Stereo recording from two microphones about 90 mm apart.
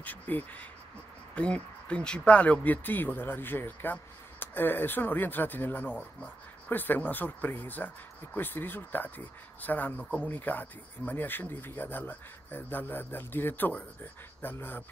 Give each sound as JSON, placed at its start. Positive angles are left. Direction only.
{"t": 0.0, "sound": "speech", "side_deg": 20}